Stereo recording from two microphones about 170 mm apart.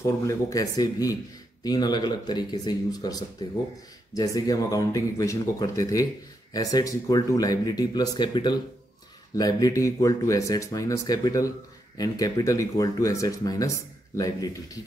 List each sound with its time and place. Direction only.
0.0 s speech: 20° left (ahead or behind)